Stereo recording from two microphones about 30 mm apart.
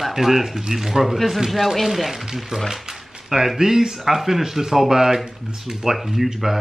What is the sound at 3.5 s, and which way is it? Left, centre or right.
Speech, centre.